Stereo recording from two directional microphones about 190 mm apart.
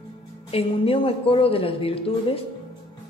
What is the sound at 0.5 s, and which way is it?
Speech, 30° left (ahead or behind).